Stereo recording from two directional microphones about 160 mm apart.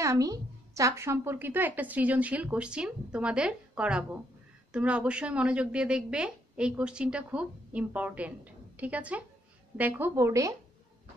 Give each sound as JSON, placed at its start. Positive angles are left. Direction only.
{"t": 0.0, "sound": "a woman's voice", "side_deg": -20}